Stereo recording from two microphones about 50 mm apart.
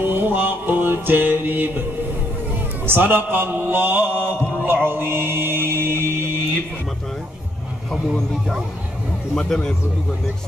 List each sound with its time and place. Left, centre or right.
0.0 s music: right
2.8 s a man's voice: right
4.8 s mantra: right
7.9 s speech: centre